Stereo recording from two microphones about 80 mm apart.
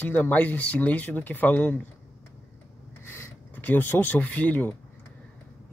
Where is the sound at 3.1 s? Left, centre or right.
Left.